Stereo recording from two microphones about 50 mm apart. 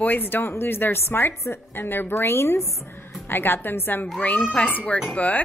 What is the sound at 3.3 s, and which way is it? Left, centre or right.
Speech, left.